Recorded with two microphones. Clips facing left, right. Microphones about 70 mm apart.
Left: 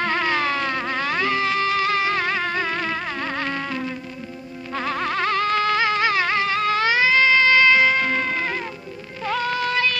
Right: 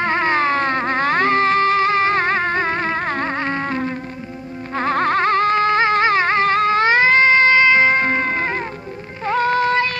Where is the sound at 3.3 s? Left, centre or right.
Right.